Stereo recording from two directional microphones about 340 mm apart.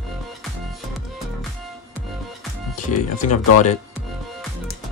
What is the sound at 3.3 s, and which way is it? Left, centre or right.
Speech, left.